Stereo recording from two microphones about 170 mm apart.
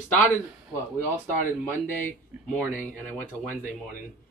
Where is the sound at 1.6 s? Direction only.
10° left (ahead or behind).